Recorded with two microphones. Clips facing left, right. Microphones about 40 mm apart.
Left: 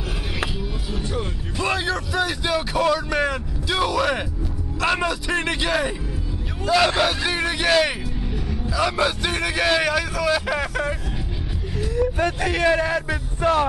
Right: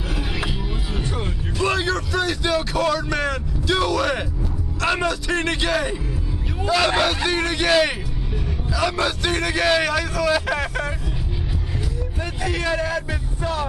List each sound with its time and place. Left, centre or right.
1.6 s a man's voice: centre
12.4 s a man's voice: left